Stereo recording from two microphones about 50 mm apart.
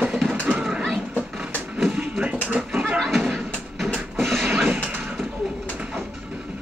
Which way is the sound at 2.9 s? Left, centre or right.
Centre.